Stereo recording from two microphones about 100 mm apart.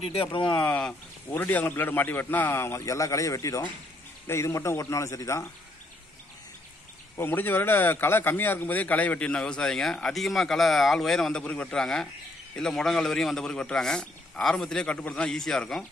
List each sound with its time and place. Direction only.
0.0 s speech: 70° left (ahead or behind)
0.6 s a man's voice: 15° left (ahead or behind)
7.2 s a man's voice: 20° left (ahead or behind); by 15.8 s 5° left (ahead or behind)